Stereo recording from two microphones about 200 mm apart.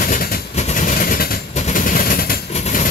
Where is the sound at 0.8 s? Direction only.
40° left (ahead or behind).